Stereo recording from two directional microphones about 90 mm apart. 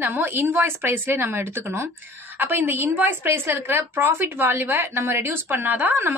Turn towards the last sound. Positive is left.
turn(degrees=-25)  # may be behind; listen again after turning